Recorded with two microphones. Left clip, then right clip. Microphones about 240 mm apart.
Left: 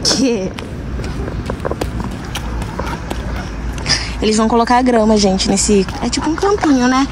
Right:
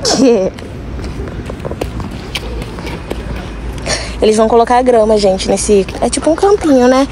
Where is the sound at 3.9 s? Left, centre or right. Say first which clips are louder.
Right 4 dB; centre.